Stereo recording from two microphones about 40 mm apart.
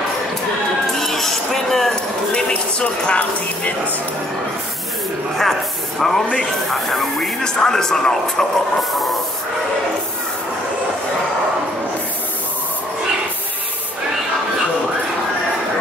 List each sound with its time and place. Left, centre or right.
0.9 s a sound: centre
2.3 s a woman's voice: left
5.4 s speech: centre
7.4 s speech: centre